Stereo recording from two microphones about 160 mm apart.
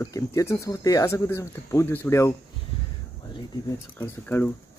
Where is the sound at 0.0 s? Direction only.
20° left (ahead or behind).